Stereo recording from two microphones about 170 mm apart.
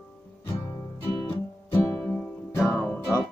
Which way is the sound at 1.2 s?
15° left (ahead or behind).